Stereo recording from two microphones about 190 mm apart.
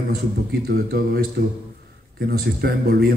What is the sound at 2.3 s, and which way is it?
Speech, 50° right (ahead or behind).